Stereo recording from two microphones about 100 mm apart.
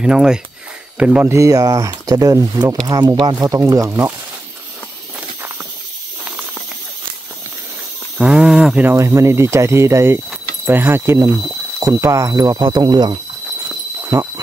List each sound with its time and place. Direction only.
0.0 s speech: 10° right (ahead or behind)
1.3 s speech: 35° right (ahead or behind); by 3.4 s 50° right (ahead or behind)
3.4 s speech: 35° right (ahead or behind)
6.2 s snake: 15° right (ahead or behind)
8.2 s a sound: 10° right (ahead or behind)
8.8 s speech: 30° right (ahead or behind)
14.0 s a sound: 30° right (ahead or behind)